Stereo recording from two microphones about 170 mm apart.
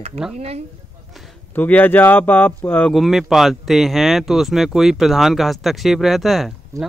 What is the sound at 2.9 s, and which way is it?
Speech, centre (ahead or behind).